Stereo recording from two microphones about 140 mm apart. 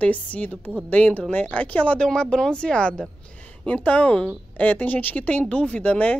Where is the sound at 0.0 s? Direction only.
10° left (ahead or behind).